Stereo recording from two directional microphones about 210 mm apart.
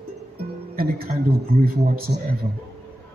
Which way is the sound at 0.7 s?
45° right (ahead or behind).